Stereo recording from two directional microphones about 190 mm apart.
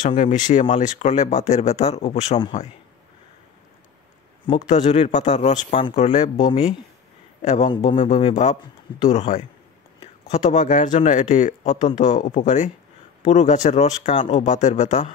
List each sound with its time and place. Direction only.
0.0 s speech: 40° left (ahead or behind)
4.6 s speech: 40° left (ahead or behind)